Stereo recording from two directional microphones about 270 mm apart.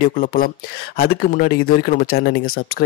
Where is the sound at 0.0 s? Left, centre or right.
Left.